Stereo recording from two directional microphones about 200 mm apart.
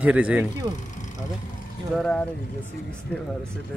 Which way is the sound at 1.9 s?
5° left (ahead or behind).